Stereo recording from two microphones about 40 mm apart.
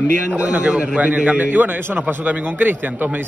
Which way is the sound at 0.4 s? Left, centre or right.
Right.